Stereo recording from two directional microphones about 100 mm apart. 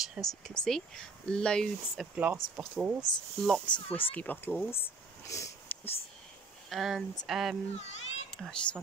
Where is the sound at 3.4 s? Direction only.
5° left (ahead or behind).